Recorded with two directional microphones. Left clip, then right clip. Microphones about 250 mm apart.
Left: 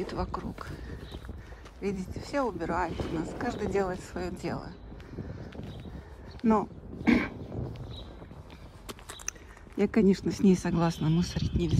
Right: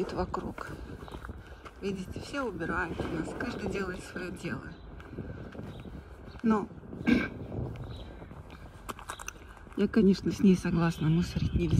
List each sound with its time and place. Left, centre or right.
0.0 s speech: centre
1.8 s speech: centre
6.4 s a sound: centre
8.8 s walk: centre
9.8 s speech: centre